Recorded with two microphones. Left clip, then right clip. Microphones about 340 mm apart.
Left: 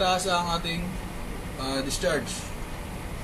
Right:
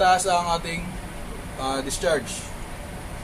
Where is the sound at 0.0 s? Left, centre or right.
Right.